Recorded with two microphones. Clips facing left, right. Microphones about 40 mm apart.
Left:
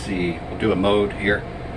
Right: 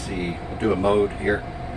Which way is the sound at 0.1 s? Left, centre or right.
Left.